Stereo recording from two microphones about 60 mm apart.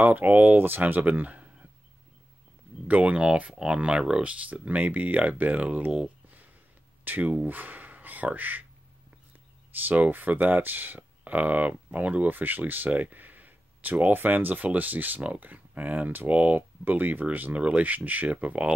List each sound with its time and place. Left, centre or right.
0.0 s speech: right
2.9 s speech: right
6.0 s a sound: right
7.1 s speech: right
9.7 s speech: right